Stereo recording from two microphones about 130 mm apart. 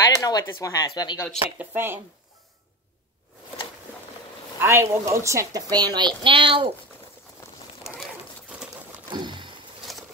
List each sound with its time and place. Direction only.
0.0 s speech: 25° left (ahead or behind)
1.6 s speech: 15° right (ahead or behind)
4.6 s a woman's voice: 20° right (ahead or behind); by 6.7 s 40° right (ahead or behind)
9.1 s a sound: 35° right (ahead or behind)
9.9 s patter: centre (ahead or behind)